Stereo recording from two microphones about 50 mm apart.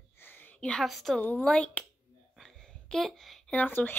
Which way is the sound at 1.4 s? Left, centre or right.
Centre.